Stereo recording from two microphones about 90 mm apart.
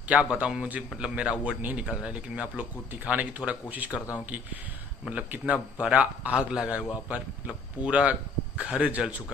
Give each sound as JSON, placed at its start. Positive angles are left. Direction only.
{"t": 0.1, "sound": "speech", "side_deg": -15}
{"t": 5.4, "sound": "speech", "side_deg": -10}